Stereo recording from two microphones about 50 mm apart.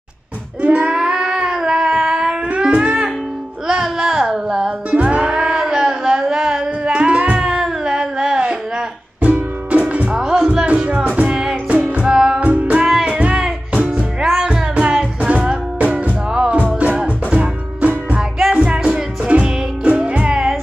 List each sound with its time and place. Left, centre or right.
0.6 s a sound: right
4.9 s music: right
7.4 s music: centre
9.2 s music: right
10.1 s music: centre
12.0 s music: centre
12.4 s music: right
12.8 s music: centre
13.1 s music: right
13.9 s music: centre